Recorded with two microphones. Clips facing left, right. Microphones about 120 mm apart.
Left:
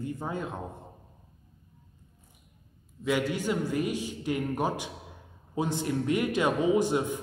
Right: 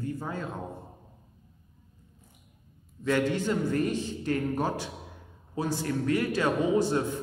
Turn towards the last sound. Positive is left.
turn(degrees=15)  # may be behind; listen again after turning